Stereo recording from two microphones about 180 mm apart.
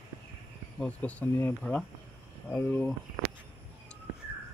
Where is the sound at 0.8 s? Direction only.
10° left (ahead or behind).